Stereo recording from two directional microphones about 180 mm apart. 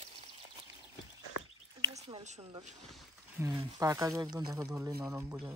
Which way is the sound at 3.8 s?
20° right (ahead or behind).